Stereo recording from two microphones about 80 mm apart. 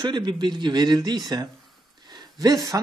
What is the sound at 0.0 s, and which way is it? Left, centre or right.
A man's voice, right.